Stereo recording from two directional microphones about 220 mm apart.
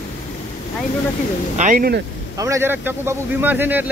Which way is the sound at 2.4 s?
15° right (ahead or behind).